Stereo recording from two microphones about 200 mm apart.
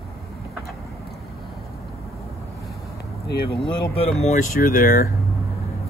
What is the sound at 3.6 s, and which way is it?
Speech, 30° left (ahead or behind).